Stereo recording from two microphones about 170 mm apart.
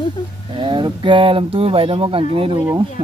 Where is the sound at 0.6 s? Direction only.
30° right (ahead or behind).